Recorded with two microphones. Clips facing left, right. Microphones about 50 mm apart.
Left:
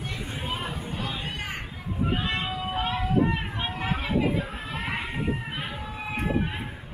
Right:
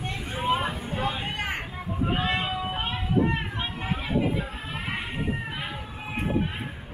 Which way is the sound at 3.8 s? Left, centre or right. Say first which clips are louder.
Left 1 dB; left.